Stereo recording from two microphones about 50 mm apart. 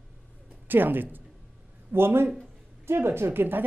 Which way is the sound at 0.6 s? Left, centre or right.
Right.